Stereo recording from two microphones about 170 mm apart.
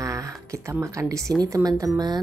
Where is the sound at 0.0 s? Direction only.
20° right (ahead or behind).